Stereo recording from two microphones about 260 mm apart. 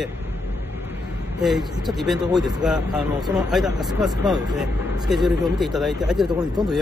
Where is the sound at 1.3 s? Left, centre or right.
Centre.